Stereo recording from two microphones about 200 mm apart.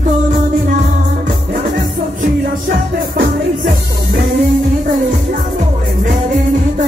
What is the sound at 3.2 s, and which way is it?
Music, 45° right (ahead or behind).